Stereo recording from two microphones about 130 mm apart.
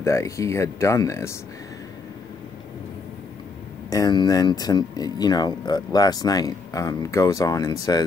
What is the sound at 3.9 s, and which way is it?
Speech, 30° left (ahead or behind).